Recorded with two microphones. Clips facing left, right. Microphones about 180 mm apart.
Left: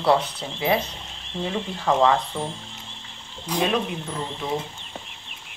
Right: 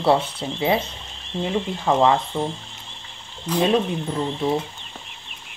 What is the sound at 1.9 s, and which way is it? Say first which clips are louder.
Speech: right 1 dB; 20° right (ahead or behind).